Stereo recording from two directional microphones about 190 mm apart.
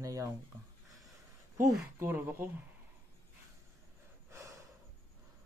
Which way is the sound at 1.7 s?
15° right (ahead or behind).